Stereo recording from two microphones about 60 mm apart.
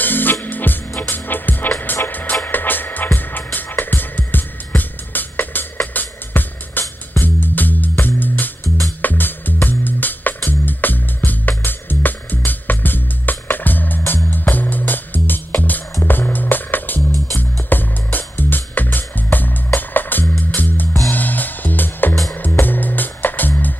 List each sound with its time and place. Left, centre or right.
0.0 s music: left